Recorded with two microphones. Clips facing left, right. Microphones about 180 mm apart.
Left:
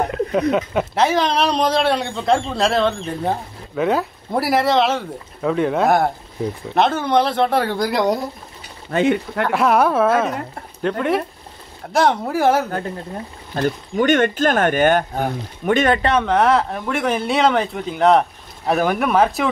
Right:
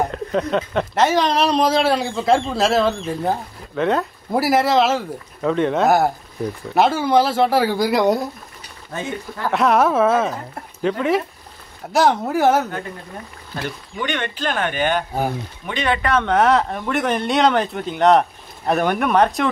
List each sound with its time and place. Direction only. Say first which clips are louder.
0.1 s speech: left 3 dB; 5° left (ahead or behind)
8.9 s speech: left 10 dB; 70° left (ahead or behind)
9.5 s speech: even; centre (ahead or behind)
13.6 s speech: left 8 dB; 45° left (ahead or behind)
16.3 s speech: right 2 dB; centre (ahead or behind)